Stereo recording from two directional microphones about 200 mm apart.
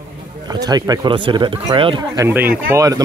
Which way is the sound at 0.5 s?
20° right (ahead or behind).